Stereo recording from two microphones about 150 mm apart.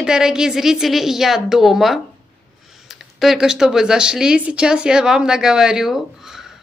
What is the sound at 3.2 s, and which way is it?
A woman's voice, 5° right (ahead or behind).